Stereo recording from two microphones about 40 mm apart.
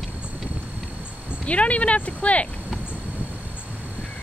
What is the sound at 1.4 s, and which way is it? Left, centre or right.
Speech, left.